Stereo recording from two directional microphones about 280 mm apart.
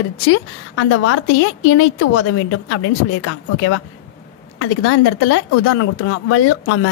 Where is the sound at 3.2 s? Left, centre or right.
Left.